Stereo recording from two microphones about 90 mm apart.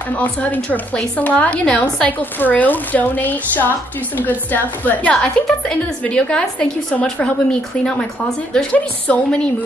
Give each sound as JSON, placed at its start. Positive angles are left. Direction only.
{"t": 0.1, "sound": "a woman's voice", "side_deg": 15}